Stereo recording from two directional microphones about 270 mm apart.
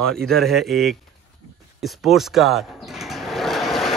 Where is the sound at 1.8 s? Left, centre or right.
Centre.